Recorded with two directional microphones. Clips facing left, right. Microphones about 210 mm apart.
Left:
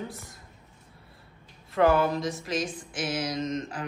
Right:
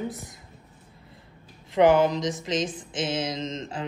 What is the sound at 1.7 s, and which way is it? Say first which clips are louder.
Speech: right 4 dB; 15° right (ahead or behind).